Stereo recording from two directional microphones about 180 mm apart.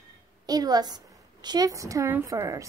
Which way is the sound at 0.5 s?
20° right (ahead or behind).